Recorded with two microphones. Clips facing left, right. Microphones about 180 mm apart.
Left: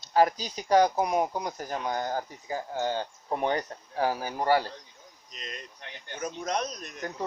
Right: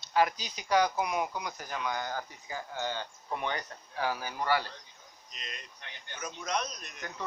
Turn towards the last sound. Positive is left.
turn(degrees=40)  # may be behind; listen again after turning